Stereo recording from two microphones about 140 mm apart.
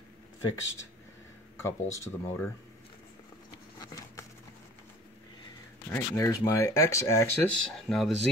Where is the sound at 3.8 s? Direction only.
25° left (ahead or behind).